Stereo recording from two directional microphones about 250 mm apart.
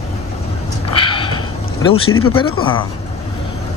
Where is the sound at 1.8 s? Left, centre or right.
Left.